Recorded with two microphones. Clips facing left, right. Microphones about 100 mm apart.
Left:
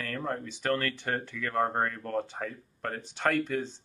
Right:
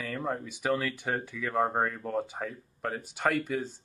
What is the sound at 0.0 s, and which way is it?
Speech, 5° right (ahead or behind).